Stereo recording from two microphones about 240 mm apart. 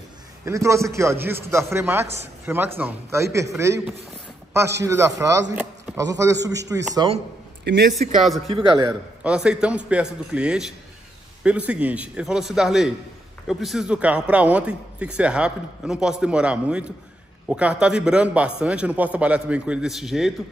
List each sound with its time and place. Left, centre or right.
0.5 s a man's voice: centre
7.6 s a man's voice: right
9.2 s a man's voice: centre